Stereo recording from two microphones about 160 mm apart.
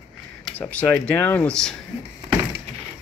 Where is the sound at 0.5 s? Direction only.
10° left (ahead or behind).